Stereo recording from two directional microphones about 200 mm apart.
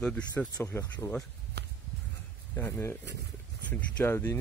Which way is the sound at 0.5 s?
15° left (ahead or behind).